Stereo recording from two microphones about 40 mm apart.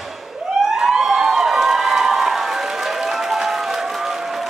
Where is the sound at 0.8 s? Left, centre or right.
Centre.